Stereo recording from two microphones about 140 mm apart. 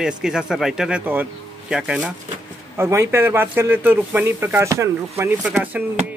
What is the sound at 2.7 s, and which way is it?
Speech, 20° right (ahead or behind).